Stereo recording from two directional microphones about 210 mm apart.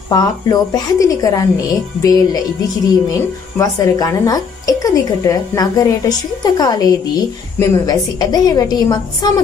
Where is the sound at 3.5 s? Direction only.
15° left (ahead or behind).